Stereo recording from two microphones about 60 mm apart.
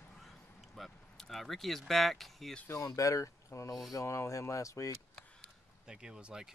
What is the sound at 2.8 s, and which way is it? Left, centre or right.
Speech, left.